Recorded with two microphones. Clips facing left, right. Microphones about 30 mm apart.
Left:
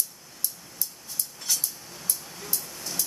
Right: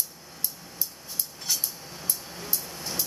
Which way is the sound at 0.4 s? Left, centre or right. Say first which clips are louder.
Even; centre.